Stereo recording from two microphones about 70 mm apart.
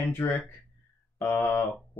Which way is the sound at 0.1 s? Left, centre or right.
Left.